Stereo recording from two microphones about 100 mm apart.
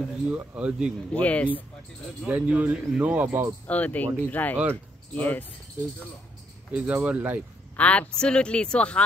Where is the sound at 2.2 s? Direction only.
15° right (ahead or behind).